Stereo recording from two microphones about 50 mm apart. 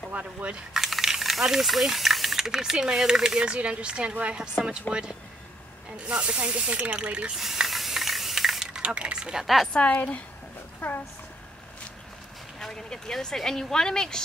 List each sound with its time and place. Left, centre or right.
0.1 s speech: right
0.7 s speech: centre
6.0 s speech: right
7.3 s spray: centre
8.8 s speech: right
9.8 s a woman's voice: left
12.5 s a woman's voice: centre